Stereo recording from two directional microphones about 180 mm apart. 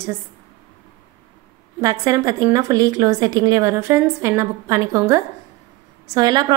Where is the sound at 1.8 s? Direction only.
20° right (ahead or behind).